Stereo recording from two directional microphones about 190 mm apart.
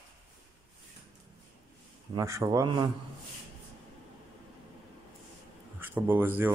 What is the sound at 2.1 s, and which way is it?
Speech, 15° right (ahead or behind).